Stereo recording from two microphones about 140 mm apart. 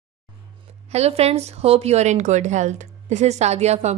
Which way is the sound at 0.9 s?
50° right (ahead or behind).